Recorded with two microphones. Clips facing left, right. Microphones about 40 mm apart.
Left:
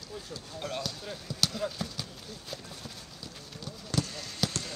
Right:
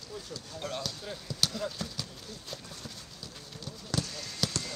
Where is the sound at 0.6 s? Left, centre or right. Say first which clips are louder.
Left 1 dB; centre.